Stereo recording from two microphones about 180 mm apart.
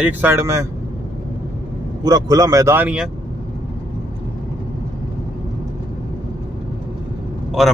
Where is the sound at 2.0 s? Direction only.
20° right (ahead or behind).